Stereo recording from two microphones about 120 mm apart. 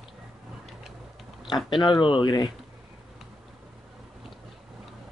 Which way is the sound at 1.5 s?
35° left (ahead or behind).